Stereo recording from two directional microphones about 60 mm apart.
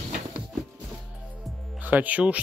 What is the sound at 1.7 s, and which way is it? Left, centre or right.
Speech, right.